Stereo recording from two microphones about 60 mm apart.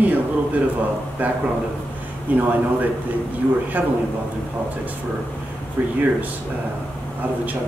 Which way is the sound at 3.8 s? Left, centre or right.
Right.